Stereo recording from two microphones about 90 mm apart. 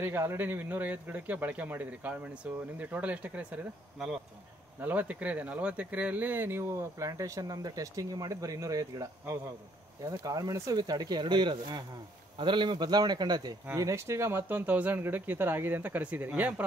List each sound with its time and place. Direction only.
0.0 s a man's voice: 25° right (ahead or behind)
4.7 s speech: 20° right (ahead or behind); by 13.6 s 50° right (ahead or behind)
13.7 s a man's voice: 35° right (ahead or behind); by 16.6 s 20° right (ahead or behind)